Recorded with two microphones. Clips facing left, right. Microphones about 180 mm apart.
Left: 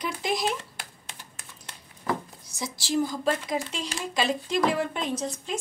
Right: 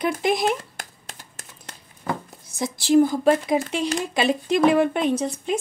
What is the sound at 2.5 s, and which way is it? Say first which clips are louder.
A woman's voice: right 10 dB; 55° right (ahead or behind).